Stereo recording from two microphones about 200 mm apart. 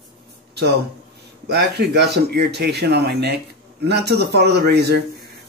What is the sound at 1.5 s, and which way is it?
A man's voice, 55° right (ahead or behind).